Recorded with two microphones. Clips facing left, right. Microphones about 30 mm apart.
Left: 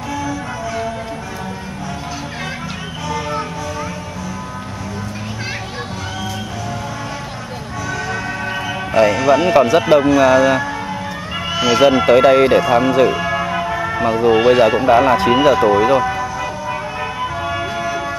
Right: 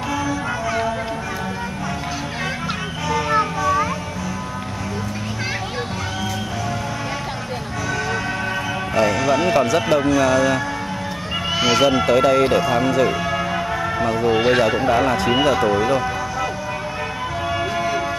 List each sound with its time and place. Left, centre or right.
0.1 s music: centre
3.1 s music: centre
8.9 s speech: centre
11.5 s fowl: centre
11.8 s speech: centre
12.1 s speech: left
16.0 s vehicle: centre
17.5 s a sound: centre